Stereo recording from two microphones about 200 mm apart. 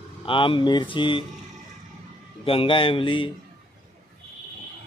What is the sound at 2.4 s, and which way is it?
Speech, 25° left (ahead or behind).